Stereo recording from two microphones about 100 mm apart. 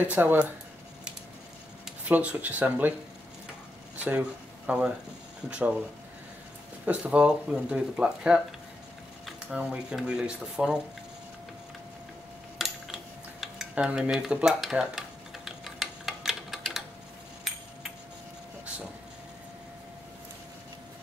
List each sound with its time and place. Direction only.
0.1 s speech: 20° right (ahead or behind)
2.0 s speech: 15° right (ahead or behind)
4.0 s speech: 15° right (ahead or behind)
6.9 s speech: 10° right (ahead or behind)
12.5 s cutlery: centre (ahead or behind)
17.5 s a sound: 5° right (ahead or behind)